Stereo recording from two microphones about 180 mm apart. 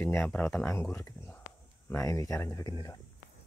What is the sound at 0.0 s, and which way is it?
Speech, 10° left (ahead or behind).